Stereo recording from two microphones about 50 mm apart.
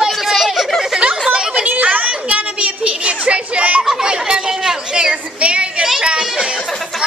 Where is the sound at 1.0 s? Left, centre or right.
Right.